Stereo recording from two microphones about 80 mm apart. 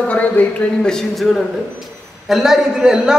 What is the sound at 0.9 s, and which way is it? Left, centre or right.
A man's voice, centre.